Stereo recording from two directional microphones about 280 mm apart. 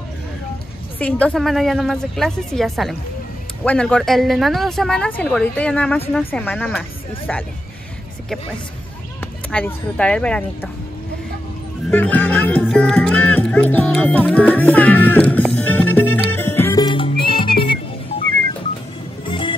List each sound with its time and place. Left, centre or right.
0.9 s speech: centre
9.2 s speech: centre
11.9 s music: centre
19.2 s music: centre